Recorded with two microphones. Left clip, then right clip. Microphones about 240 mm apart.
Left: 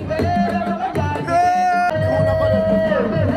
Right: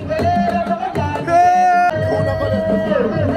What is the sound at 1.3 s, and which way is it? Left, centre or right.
Music, centre.